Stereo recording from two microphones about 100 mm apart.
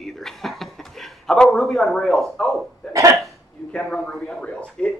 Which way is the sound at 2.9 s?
30° right (ahead or behind).